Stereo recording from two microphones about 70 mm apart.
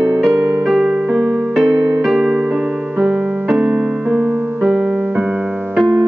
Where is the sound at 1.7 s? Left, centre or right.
Right.